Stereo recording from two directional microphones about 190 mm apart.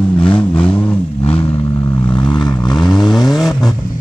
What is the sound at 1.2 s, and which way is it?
Vehicle, 30° left (ahead or behind).